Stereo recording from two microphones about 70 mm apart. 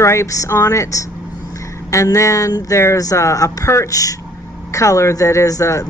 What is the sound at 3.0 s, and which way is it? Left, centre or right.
Speech, left.